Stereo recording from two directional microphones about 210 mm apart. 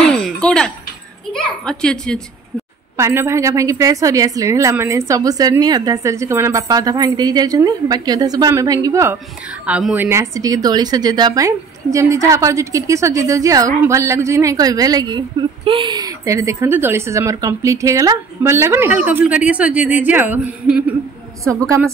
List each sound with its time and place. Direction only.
0.0 s a sound: 5° left (ahead or behind)
1.3 s a woman's voice: 5° left (ahead or behind)
3.0 s a woman's voice: 10° right (ahead or behind)